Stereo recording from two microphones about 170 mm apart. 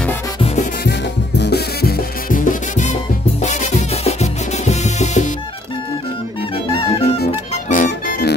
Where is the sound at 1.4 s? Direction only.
70° left (ahead or behind); by 2.9 s 50° left (ahead or behind).